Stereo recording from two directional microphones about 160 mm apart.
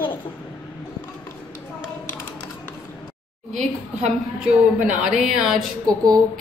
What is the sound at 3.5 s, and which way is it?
Speech, 50° right (ahead or behind).